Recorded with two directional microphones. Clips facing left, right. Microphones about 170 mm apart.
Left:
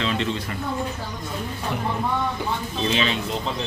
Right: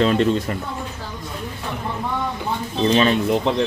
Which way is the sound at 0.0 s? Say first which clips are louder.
Right 8 dB; 45° right (ahead or behind).